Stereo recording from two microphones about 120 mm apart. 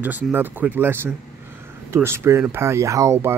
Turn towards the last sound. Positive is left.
turn(degrees=-20)  # may be behind; listen again after turning